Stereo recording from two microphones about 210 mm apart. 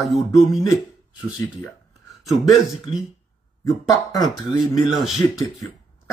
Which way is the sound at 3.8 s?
20° left (ahead or behind).